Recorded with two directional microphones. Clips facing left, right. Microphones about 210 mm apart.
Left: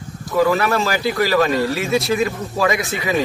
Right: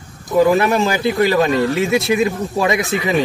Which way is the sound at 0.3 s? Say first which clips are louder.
Right 3 dB; 20° right (ahead or behind).